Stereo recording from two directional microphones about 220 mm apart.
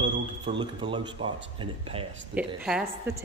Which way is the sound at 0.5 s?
20° right (ahead or behind).